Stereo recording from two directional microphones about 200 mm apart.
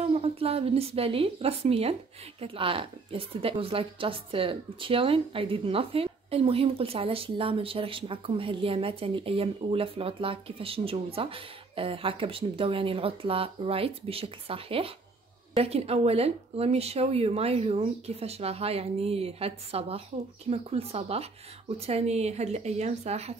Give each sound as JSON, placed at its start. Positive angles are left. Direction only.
{"t": 0.0, "sound": "speech", "side_deg": -30}